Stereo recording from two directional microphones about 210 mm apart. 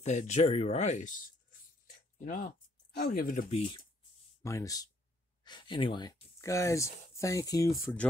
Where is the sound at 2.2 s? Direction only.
40° left (ahead or behind).